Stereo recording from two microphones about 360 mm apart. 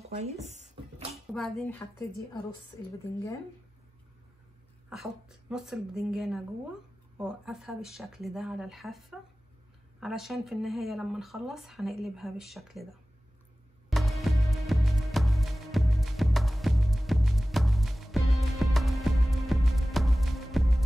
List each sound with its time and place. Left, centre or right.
0.1 s a sound: centre
1.3 s speech: centre
4.8 s speech: centre
13.8 s music: centre